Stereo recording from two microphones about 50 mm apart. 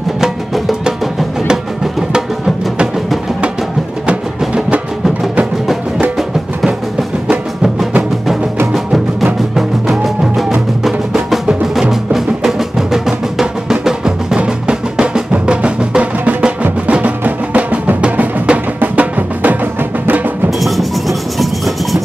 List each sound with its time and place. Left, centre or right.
0.2 s music: centre
6.1 s music: centre
10.8 s music: centre; by 20.2 s right
20.4 s music: centre